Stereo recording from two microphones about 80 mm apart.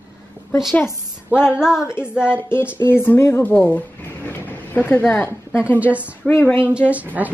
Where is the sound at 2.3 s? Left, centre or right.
Left.